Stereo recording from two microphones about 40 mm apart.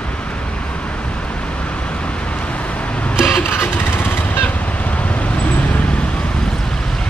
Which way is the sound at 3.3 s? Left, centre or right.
Left.